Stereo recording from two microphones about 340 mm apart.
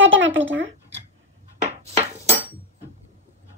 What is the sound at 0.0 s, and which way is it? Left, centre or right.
Speech, right.